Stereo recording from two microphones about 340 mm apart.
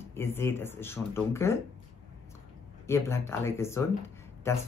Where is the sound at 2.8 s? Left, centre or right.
Centre.